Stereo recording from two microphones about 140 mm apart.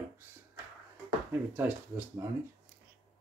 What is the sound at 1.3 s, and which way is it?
Speech, 15° right (ahead or behind).